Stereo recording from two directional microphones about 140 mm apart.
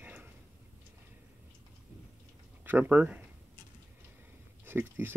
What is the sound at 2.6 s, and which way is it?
Speech, 15° right (ahead or behind).